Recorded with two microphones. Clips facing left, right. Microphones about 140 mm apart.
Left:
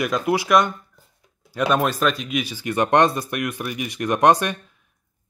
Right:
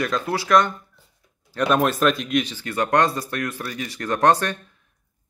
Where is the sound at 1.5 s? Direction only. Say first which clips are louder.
Right 1 dB; 5° left (ahead or behind).